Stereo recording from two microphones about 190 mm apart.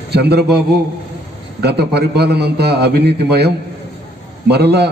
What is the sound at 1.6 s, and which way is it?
A man's voice, 60° right (ahead or behind).